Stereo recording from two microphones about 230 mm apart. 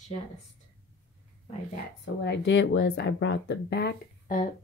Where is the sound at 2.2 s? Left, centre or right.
Left.